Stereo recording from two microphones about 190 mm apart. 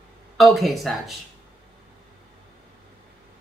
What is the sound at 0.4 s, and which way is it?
Speech, centre (ahead or behind).